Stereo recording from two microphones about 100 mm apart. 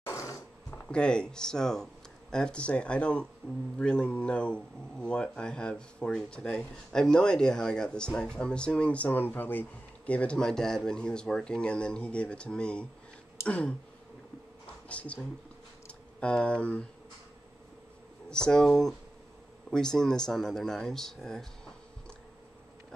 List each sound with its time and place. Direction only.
0.0 s a sound: 30° left (ahead or behind)
0.7 s speech: 10° left (ahead or behind)
14.9 s speech: 10° left (ahead or behind)
18.3 s speech: 5° left (ahead or behind)